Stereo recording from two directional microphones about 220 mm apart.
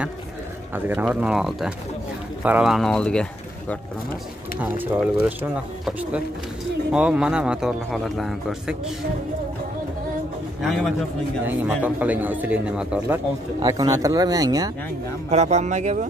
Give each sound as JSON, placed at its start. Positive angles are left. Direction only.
{"t": 0.7, "sound": "a man's voice", "side_deg": -10}
{"t": 4.6, "sound": "a man's voice", "side_deg": -10}
{"t": 10.6, "sound": "a man's voice", "side_deg": 0}
{"t": 13.6, "sound": "speech", "side_deg": -15}
{"t": 15.2, "sound": "speech", "side_deg": -30}